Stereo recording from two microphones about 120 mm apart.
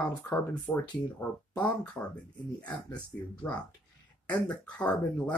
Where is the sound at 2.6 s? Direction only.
10° left (ahead or behind).